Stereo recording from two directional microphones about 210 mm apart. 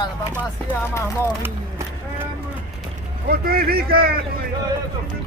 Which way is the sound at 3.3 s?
45° right (ahead or behind).